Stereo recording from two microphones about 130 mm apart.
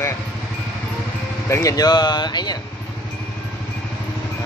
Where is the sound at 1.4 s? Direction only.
25° left (ahead or behind).